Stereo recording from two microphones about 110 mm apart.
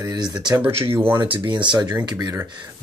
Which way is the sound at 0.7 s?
60° right (ahead or behind).